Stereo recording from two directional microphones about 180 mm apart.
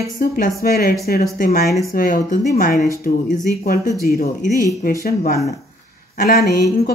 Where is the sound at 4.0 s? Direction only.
55° left (ahead or behind).